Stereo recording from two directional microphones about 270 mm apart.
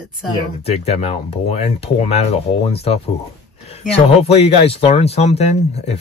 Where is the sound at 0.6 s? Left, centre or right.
Left.